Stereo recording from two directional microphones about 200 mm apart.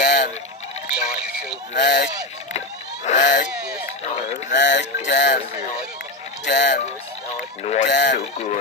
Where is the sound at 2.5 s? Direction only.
35° left (ahead or behind).